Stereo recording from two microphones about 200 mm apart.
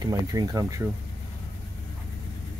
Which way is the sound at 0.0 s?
20° right (ahead or behind).